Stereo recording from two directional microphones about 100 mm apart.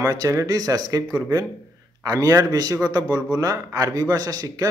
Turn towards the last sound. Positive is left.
turn(degrees=-35)  # may be behind; listen again after turning